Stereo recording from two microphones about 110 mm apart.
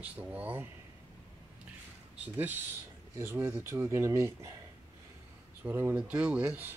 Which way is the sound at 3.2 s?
20° right (ahead or behind).